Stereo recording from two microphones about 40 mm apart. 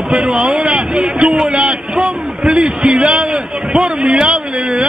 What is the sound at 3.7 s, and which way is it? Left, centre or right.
A man's voice, centre.